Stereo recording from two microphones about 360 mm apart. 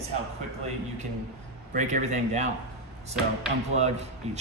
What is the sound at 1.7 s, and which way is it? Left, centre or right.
Speech, right.